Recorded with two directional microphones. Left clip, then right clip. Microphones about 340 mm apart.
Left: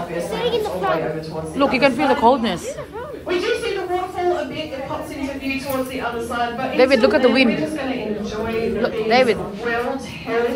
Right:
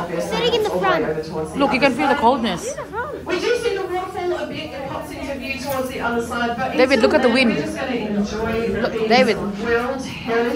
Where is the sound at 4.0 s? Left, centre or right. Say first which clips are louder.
Left 2 dB; centre.